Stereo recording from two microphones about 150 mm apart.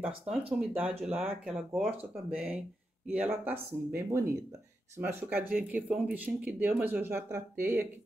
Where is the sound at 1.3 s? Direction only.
10° right (ahead or behind).